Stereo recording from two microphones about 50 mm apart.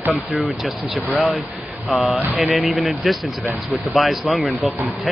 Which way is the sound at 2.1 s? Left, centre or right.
Right.